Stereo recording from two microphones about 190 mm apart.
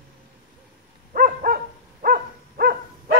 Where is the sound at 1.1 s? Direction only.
50° right (ahead or behind).